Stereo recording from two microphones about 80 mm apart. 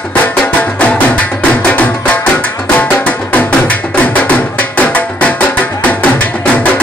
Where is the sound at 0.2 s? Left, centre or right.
Centre.